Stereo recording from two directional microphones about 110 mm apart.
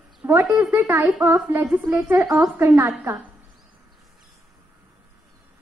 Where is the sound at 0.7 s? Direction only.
20° right (ahead or behind).